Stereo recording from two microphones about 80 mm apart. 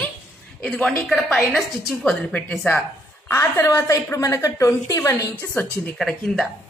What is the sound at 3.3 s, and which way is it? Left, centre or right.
A woman's voice, left.